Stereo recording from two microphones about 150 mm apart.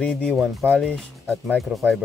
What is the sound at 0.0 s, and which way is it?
Speech, 5° left (ahead or behind).